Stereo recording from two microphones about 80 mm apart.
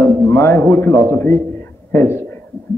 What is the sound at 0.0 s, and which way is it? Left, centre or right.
A man's voice, left.